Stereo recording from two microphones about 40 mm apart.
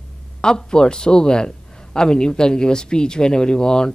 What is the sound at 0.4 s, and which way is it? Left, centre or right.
Speech, centre.